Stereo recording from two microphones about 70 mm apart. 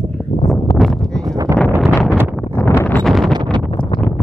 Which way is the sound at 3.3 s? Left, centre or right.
Right.